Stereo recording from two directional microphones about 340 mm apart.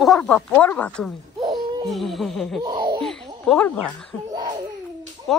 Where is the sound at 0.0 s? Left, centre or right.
Centre.